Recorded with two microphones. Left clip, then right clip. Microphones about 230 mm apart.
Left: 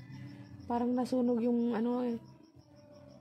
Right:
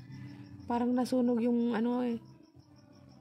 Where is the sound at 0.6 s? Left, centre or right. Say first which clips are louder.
Right 1 dB; centre.